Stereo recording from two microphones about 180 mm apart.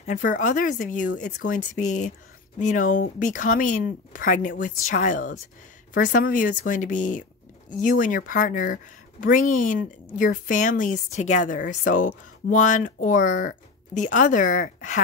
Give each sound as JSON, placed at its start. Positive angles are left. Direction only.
{"t": 0.0, "sound": "a woman's voice", "side_deg": 45}